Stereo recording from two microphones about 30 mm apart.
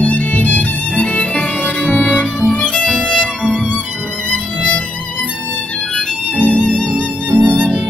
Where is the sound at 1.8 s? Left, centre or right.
Left.